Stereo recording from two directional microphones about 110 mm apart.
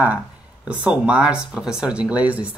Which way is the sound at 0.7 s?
10° right (ahead or behind).